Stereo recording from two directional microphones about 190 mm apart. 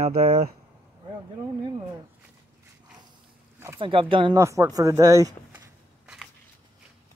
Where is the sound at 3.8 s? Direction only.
25° right (ahead or behind).